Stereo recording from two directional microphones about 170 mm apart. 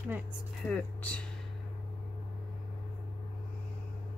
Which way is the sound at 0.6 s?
5° left (ahead or behind).